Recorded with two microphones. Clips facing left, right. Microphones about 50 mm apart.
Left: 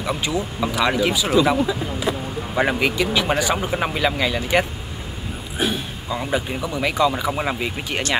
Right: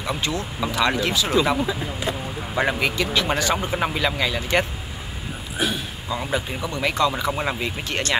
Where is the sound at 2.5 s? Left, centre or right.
Centre.